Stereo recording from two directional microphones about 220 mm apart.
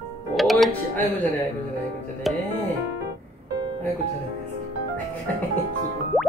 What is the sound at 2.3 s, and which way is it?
Speech, centre (ahead or behind).